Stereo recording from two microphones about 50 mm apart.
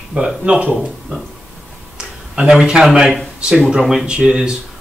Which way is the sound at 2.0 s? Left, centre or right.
Centre.